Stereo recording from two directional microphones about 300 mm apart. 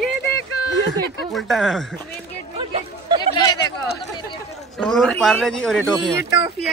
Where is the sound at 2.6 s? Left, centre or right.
Centre.